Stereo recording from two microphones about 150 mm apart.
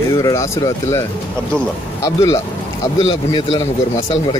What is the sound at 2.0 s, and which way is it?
A man's voice, 20° left (ahead or behind).